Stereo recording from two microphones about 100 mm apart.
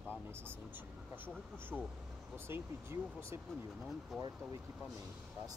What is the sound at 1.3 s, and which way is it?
Speech, 10° left (ahead or behind).